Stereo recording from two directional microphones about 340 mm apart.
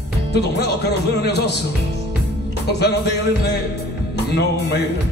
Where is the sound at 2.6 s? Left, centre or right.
Left.